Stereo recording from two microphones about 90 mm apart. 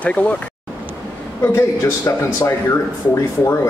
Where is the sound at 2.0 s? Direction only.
35° left (ahead or behind).